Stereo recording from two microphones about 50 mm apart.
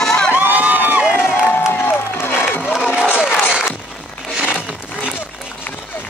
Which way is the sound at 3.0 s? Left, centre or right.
Centre.